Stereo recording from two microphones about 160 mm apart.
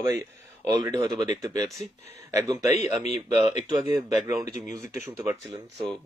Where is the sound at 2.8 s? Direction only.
45° left (ahead or behind).